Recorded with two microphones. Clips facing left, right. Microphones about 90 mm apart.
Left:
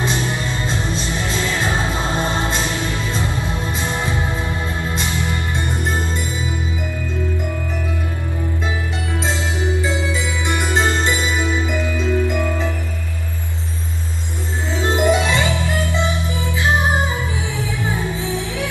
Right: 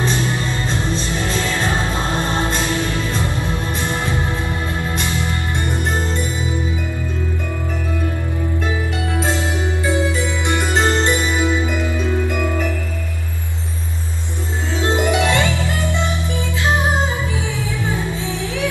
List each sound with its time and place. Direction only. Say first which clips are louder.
0.7 s music: right 1 dB; 20° left (ahead or behind)
10.5 s music: right 1 dB; 15° left (ahead or behind)
14.8 s music: left 2 dB; 20° right (ahead or behind)
15.1 s music: right 1 dB; 20° left (ahead or behind)